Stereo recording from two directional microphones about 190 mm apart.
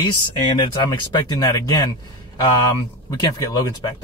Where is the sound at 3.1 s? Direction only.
20° left (ahead or behind).